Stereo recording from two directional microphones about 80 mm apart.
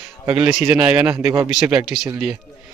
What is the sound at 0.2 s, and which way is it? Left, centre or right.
A man's voice, right.